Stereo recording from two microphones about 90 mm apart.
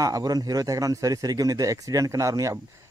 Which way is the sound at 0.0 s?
45° right (ahead or behind).